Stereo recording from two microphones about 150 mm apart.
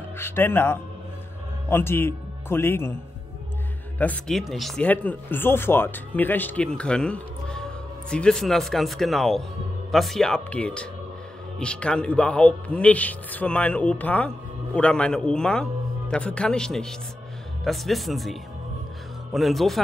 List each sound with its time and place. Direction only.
0.2 s speech: 15° left (ahead or behind)
4.0 s speech: 5° left (ahead or behind)